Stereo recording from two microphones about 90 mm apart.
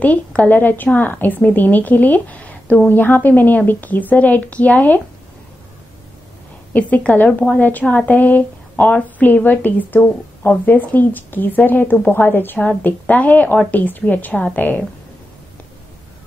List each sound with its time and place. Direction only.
0.0 s a woman's voice: 15° left (ahead or behind)
6.7 s a woman's voice: 15° left (ahead or behind)